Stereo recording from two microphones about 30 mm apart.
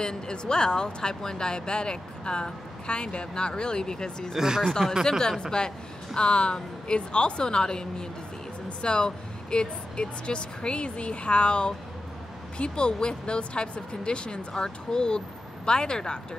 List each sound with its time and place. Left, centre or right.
0.0 s speech: left
4.4 s speech: centre
5.4 s speech: left